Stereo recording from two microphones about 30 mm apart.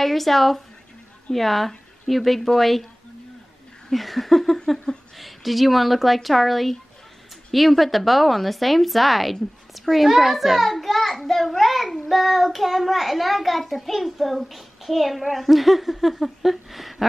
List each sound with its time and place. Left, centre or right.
0.0 s a woman's voice: centre
3.9 s a woman's voice: centre